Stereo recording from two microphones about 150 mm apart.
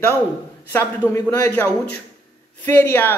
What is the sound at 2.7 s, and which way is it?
Speech, 15° left (ahead or behind).